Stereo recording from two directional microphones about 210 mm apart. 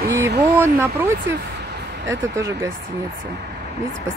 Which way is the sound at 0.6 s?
10° right (ahead or behind).